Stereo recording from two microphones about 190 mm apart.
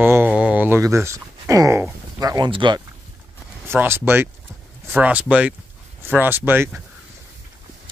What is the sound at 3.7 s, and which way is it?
Speech, 10° right (ahead or behind).